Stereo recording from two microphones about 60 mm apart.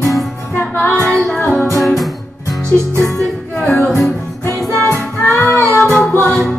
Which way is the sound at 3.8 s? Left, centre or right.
Left.